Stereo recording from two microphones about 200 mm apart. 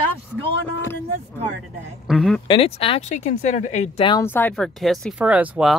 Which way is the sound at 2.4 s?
30° left (ahead or behind).